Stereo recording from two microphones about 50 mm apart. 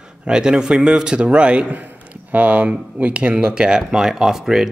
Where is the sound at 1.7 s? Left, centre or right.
Right; by 4.7 s centre.